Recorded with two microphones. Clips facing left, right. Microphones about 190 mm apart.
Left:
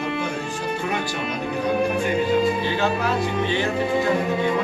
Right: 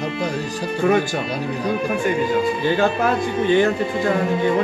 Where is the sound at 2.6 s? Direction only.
50° right (ahead or behind).